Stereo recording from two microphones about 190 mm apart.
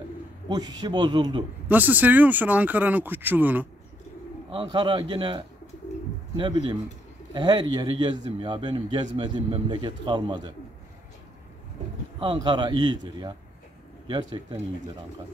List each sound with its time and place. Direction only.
0.5 s speech: 20° right (ahead or behind)
1.7 s speech: 10° right (ahead or behind)
4.5 s speech: 25° right (ahead or behind)
12.2 s speech: 25° right (ahead or behind)